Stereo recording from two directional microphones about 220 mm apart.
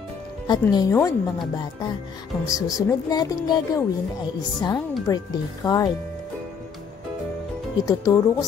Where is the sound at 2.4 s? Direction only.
15° left (ahead or behind).